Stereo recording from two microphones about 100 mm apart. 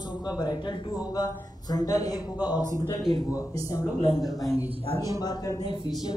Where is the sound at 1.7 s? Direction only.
40° left (ahead or behind).